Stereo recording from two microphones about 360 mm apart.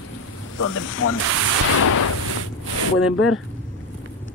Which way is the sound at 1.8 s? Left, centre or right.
Left.